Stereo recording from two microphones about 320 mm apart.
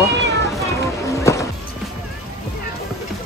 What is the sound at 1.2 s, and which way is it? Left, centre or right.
Music, centre.